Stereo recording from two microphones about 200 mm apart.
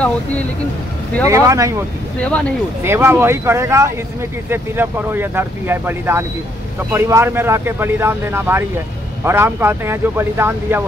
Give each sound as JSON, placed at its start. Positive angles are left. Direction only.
{"t": 0.0, "sound": "speech", "side_deg": 5}
{"t": 1.2, "sound": "speech", "side_deg": -15}
{"t": 2.8, "sound": "speech", "side_deg": -10}